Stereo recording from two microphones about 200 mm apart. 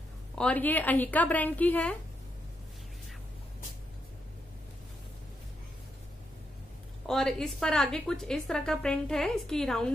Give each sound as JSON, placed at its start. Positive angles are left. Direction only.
{"t": 0.4, "sound": "a woman's voice", "side_deg": 5}
{"t": 7.1, "sound": "a woman's voice", "side_deg": 0}